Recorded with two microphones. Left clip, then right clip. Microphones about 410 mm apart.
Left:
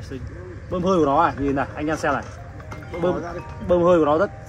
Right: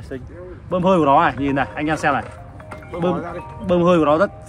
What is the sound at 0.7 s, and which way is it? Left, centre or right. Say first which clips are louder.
Speech: right 5 dB; right.